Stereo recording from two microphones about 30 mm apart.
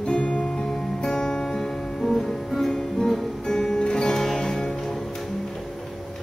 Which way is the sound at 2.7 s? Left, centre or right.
Centre.